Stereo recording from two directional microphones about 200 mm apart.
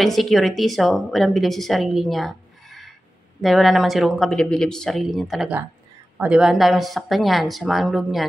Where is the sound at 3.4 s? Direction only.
Centre (ahead or behind).